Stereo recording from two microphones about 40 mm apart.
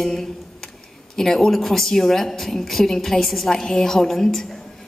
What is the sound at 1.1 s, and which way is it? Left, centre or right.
A woman's voice, centre.